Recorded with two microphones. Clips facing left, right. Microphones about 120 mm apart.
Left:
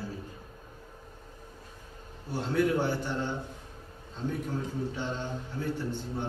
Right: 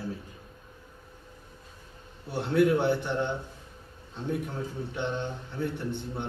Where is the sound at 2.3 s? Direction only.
60° right (ahead or behind).